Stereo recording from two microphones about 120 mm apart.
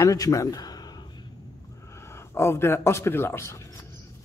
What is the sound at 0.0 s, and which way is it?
A man's voice, 30° left (ahead or behind).